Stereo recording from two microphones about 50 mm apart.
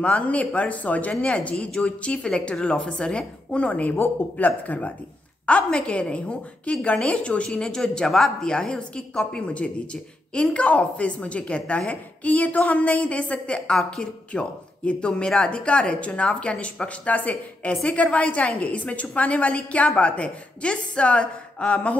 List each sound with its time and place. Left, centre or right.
0.0 s a woman's voice: left
5.5 s a woman's voice: left
9.4 s a woman's voice: left
13.7 s a woman's voice: centre